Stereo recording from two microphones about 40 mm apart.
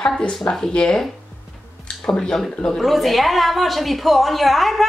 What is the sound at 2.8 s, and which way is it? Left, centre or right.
A woman's voice, centre.